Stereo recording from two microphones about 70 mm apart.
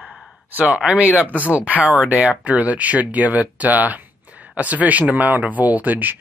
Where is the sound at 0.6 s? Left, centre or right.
Centre.